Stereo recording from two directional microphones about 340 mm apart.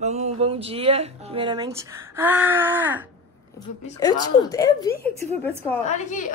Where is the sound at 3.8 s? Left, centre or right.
Centre.